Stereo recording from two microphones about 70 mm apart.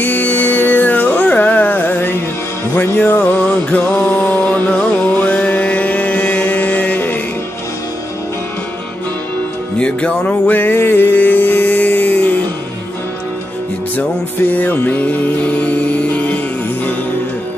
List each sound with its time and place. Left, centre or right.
0.0 s music: left
9.8 s music: centre
14.5 s music: left